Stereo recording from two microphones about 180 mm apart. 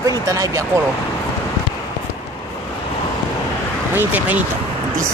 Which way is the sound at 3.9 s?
10° right (ahead or behind).